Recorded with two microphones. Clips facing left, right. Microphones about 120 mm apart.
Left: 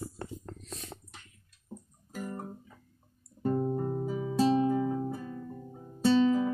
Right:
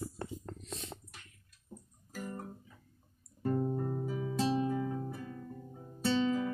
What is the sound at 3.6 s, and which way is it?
Music, 20° left (ahead or behind).